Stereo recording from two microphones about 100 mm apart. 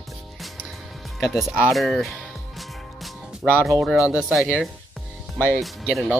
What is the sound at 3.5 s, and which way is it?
Speech, 25° right (ahead or behind).